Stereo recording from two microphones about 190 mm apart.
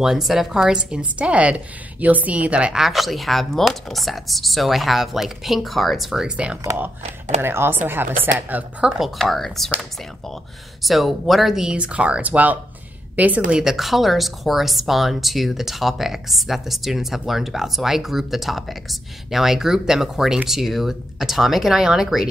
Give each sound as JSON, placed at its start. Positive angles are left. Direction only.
{"t": 0.0, "sound": "speech", "side_deg": 0}
{"t": 7.0, "sound": "speech", "side_deg": -35}
{"t": 7.4, "sound": "speech", "side_deg": -10}
{"t": 10.8, "sound": "a woman's voice", "side_deg": 0}